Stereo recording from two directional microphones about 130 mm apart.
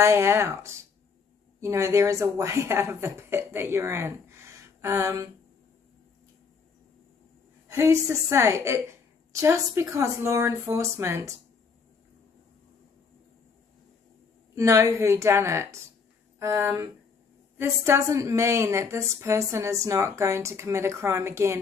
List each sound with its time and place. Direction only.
0.0 s a woman's voice: 20° right (ahead or behind)
7.6 s a woman's voice: 25° right (ahead or behind)
14.5 s a woman's voice: 25° right (ahead or behind)